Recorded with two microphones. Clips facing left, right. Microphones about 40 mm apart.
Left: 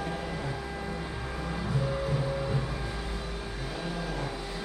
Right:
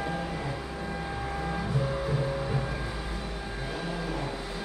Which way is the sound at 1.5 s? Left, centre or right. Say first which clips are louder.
Even; centre.